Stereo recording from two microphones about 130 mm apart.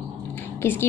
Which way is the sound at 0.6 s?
20° left (ahead or behind).